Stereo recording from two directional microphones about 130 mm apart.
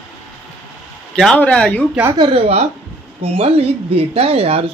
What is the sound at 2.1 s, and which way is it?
A woman's voice, 45° right (ahead or behind).